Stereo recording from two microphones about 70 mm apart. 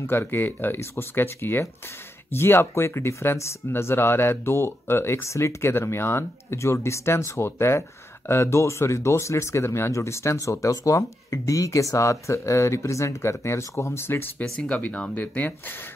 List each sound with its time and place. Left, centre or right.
0.0 s speech: left
14.4 s speech: centre